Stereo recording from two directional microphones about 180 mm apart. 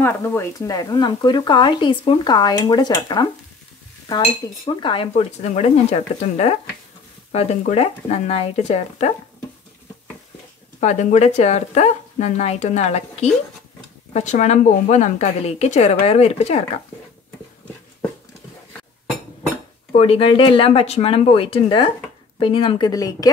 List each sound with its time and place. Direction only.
0.0 s speech: 15° left (ahead or behind); by 9.1 s 35° left (ahead or behind)
10.8 s speech: 40° left (ahead or behind)
19.9 s speech: 30° left (ahead or behind)